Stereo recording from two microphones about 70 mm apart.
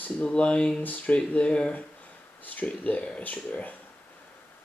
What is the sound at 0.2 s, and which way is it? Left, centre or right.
Speech, centre.